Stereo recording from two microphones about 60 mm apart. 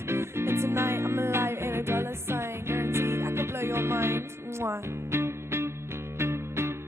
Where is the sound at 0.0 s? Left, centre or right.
Right.